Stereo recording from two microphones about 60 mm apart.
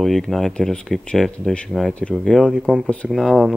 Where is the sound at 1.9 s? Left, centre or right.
Left.